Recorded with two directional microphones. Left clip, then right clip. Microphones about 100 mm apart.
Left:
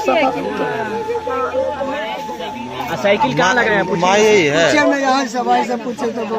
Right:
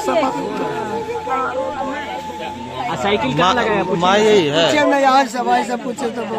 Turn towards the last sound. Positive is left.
turn(degrees=25)  # may be behind; listen again after turning